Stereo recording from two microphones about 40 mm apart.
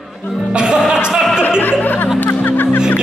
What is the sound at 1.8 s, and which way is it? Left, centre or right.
Music, left.